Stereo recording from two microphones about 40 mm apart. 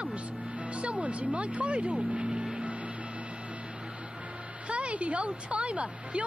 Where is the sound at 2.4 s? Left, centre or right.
Right.